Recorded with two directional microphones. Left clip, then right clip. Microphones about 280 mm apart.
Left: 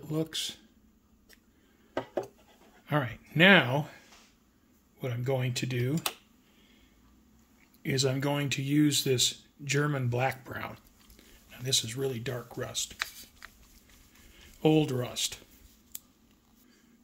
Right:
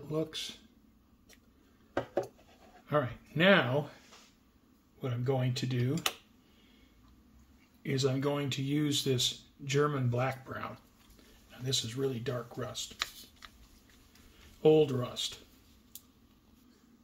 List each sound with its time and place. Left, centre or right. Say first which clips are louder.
0.1 s speech: left 2 dB; left
2.0 s a sound: even; centre
2.9 s speech: even; left
5.0 s speech: left 2 dB; left
7.8 s speech: left 2 dB; left
14.6 s speech: right 1 dB; left